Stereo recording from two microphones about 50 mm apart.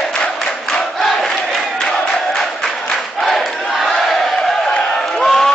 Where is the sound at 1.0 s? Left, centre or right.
Centre.